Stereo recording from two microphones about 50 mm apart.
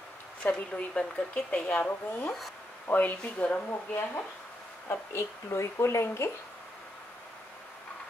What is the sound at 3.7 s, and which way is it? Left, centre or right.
Speech, left.